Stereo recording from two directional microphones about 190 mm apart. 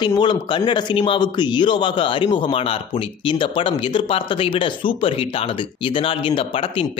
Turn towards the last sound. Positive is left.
turn(degrees=30)  # may be behind; listen again after turning